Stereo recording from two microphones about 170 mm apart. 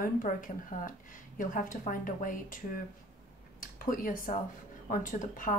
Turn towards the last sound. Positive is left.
turn(degrees=55)  # may be behind; listen again after turning